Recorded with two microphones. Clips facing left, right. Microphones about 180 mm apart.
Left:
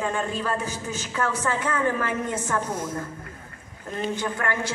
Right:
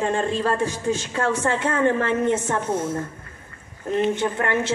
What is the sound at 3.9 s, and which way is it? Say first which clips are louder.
Speech: right 7 dB; 25° right (ahead or behind).